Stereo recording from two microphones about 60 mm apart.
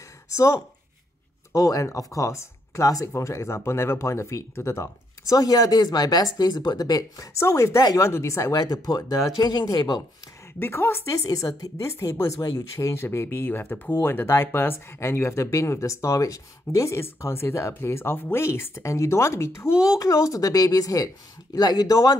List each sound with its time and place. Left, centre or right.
0.3 s speech: left
1.5 s speech: left
3.1 s speech: left
7.3 s speech: left
7.8 s speech: left
8.1 s speech: left
10.6 s a woman's voice: left
11.1 s speech: left
19.8 s speech: left